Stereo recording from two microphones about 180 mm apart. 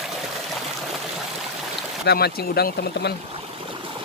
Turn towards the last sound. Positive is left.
turn(degrees=65)  # may be behind; listen again after turning